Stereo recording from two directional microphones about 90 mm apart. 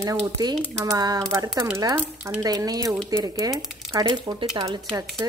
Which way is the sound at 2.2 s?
40° right (ahead or behind).